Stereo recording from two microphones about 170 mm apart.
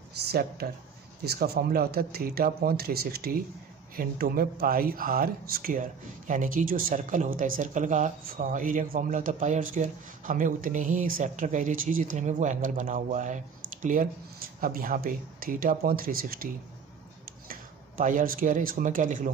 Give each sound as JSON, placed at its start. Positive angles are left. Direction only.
{"t": 0.3, "sound": "speech", "side_deg": -65}
{"t": 17.5, "sound": "speech", "side_deg": -50}